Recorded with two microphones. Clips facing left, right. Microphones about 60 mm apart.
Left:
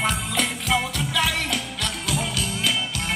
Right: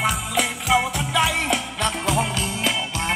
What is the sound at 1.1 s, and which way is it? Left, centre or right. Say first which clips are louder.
Music: right 4 dB; right.